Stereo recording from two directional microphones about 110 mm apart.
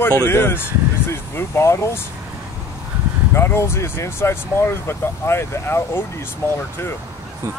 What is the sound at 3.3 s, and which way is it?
Speech, 25° left (ahead or behind).